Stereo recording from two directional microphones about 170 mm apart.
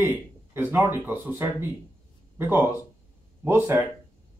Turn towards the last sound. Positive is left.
turn(degrees=-10)  # may be behind; listen again after turning